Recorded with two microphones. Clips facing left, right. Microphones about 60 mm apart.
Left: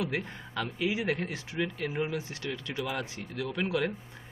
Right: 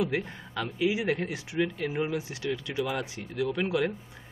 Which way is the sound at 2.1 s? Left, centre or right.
Centre.